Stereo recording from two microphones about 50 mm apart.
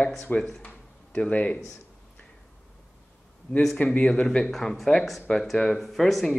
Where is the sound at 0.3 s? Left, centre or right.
Left.